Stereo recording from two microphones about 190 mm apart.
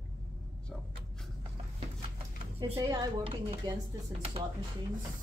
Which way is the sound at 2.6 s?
25° right (ahead or behind).